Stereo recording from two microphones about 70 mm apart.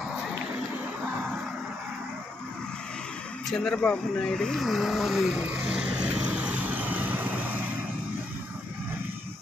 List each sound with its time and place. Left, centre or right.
3.4 s speech: centre
3.7 s vehicle: centre; by 7.7 s right